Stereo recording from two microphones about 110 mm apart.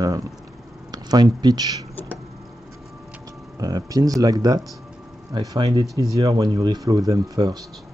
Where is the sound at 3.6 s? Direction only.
35° right (ahead or behind).